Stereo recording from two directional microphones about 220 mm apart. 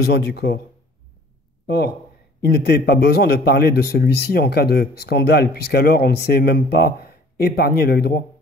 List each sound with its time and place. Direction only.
0.0 s a man's voice: 45° left (ahead or behind)
2.4 s a man's voice: 45° left (ahead or behind)